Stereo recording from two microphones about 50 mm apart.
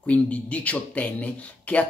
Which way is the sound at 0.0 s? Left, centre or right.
Left.